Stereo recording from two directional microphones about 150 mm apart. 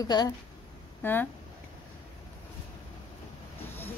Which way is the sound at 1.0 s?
15° left (ahead or behind).